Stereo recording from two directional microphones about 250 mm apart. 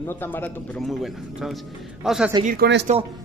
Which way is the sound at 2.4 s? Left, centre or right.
Right.